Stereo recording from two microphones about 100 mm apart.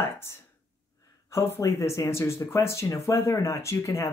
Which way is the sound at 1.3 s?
25° left (ahead or behind).